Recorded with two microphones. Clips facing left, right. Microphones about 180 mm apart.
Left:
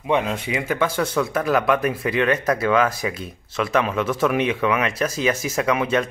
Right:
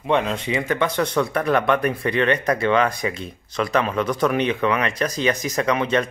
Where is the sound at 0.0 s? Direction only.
10° left (ahead or behind).